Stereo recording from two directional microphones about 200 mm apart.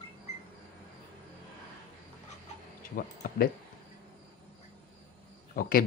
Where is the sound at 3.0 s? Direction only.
45° left (ahead or behind).